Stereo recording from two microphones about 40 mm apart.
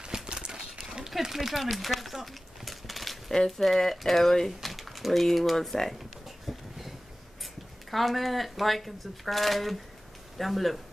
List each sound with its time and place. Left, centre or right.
0.0 s horse: right
1.2 s a sound: centre
4.5 s speech: centre
7.9 s speech: centre